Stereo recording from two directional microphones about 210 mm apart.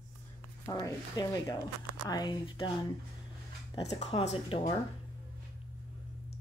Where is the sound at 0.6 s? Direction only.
15° left (ahead or behind).